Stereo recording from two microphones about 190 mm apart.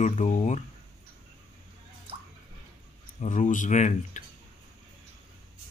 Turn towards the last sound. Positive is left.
turn(degrees=40)  # may be behind; listen again after turning